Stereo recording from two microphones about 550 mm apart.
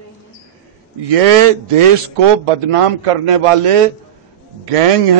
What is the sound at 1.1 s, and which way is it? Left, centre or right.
A man's voice, right.